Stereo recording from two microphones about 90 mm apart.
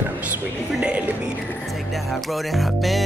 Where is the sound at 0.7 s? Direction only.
10° right (ahead or behind).